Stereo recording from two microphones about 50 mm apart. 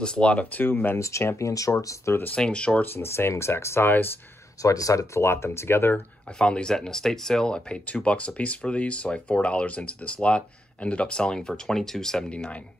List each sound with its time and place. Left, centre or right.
0.0 s speech: centre
0.7 s speech: left
0.9 s speech: left
2.3 s speech: left
2.8 s speech: left
4.6 s speech: left
6.3 s speech: centre